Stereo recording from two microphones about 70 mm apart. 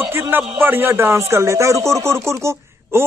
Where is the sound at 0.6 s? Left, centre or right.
Right.